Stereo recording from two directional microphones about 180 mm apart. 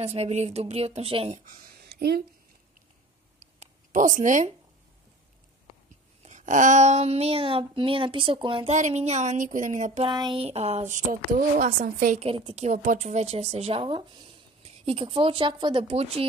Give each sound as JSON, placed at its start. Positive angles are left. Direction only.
{"t": 0.0, "sound": "speech", "side_deg": -35}
{"t": 1.4, "sound": "speech", "side_deg": -50}
{"t": 1.9, "sound": "a sound", "side_deg": -60}
{"t": 3.3, "sound": "a sound", "side_deg": -40}
{"t": 6.2, "sound": "speech", "side_deg": -40}
{"t": 8.7, "sound": "speech", "side_deg": -40}
{"t": 10.0, "sound": "speech", "side_deg": -25}
{"t": 12.3, "sound": "speech", "side_deg": -30}